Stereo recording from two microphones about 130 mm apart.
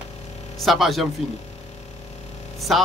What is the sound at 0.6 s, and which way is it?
Speech, centre (ahead or behind).